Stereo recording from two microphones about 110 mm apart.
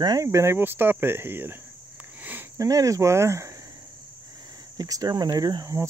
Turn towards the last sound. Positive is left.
turn(degrees=-30)  # may be behind; listen again after turning